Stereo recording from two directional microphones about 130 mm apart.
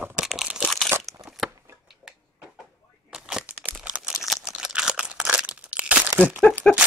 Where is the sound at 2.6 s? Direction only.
5° right (ahead or behind).